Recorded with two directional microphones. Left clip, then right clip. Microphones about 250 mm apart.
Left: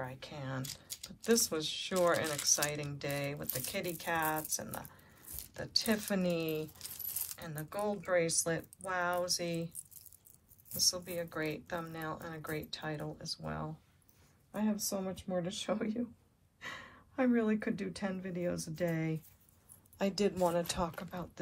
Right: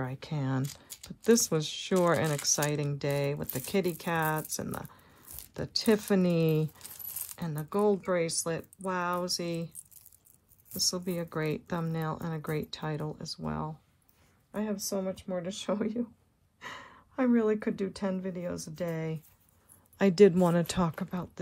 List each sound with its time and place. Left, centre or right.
0.1 s speech: right
10.7 s speech: right